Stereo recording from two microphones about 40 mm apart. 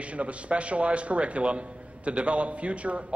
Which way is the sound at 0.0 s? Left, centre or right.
Right.